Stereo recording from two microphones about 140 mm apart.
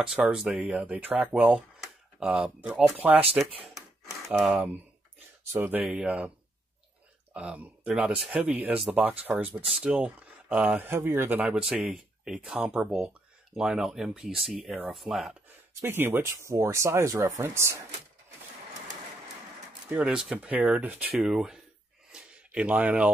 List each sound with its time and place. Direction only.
0.0 s speech: 5° right (ahead or behind)
4.3 s speech: 5° right (ahead or behind)
7.3 s speech: 10° right (ahead or behind)
11.5 s speech: 5° right (ahead or behind)
15.8 s speech: 15° right (ahead or behind)
19.9 s speech: 5° right (ahead or behind)
22.1 s a sound: 5° right (ahead or behind)